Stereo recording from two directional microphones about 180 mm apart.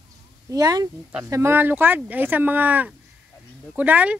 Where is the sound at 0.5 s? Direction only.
20° right (ahead or behind).